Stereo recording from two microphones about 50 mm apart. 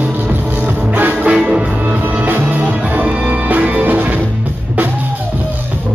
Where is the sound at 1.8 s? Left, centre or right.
Right.